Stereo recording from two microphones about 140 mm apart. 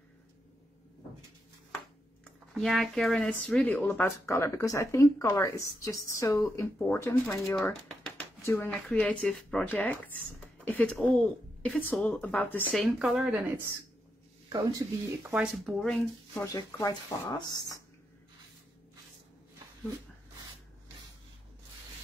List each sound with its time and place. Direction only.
2.5 s speech: centre (ahead or behind); by 8.6 s 20° left (ahead or behind)
8.6 s a woman's voice: 10° left (ahead or behind)
12.8 s speech: 5° right (ahead or behind)
14.5 s speech: 25° right (ahead or behind)
15.3 s speech: 5° right (ahead or behind)
16.3 s speech: 25° left (ahead or behind)